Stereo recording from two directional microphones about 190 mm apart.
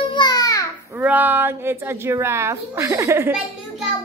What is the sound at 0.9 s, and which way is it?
Speech, 10° right (ahead or behind).